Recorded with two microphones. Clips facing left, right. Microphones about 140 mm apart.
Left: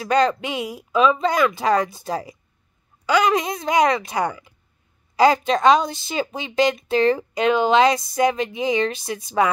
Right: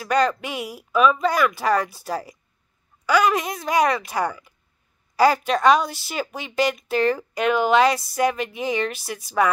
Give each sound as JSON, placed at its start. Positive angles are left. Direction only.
{"t": 0.0, "sound": "a woman's voice", "side_deg": 25}